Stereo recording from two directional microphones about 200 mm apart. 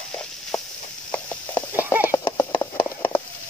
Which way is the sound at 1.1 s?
10° left (ahead or behind).